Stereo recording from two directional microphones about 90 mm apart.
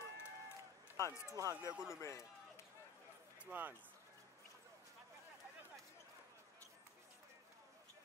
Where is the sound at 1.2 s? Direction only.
40° right (ahead or behind).